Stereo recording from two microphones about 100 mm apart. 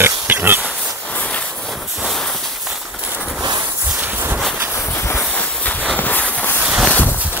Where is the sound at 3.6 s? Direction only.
25° right (ahead or behind).